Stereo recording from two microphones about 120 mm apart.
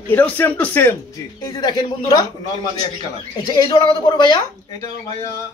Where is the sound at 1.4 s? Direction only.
35° left (ahead or behind).